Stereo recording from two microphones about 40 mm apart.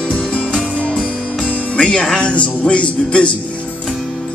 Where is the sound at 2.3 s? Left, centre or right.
Left.